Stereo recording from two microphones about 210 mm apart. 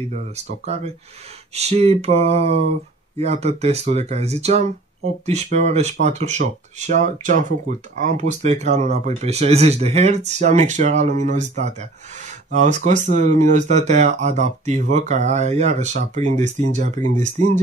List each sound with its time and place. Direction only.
0.1 s speech: 30° right (ahead or behind)